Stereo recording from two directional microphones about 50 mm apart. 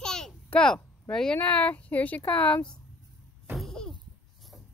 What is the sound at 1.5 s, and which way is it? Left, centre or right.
Speech, left.